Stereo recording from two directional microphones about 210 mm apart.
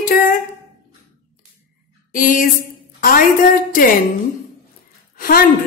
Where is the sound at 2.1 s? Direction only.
40° left (ahead or behind).